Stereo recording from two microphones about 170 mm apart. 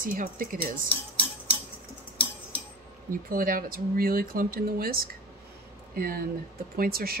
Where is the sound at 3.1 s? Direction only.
55° right (ahead or behind).